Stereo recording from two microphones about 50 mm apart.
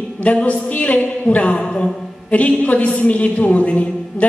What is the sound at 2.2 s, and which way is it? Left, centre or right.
A woman's voice, left.